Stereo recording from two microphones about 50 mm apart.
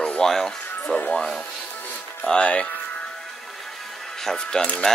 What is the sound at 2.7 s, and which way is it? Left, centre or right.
Music, left.